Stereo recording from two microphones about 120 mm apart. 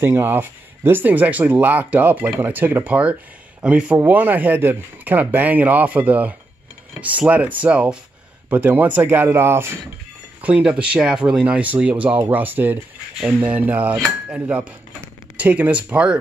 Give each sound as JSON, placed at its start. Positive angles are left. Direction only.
{"t": 0.0, "sound": "speech", "side_deg": -20}
{"t": 10.4, "sound": "speech", "side_deg": -10}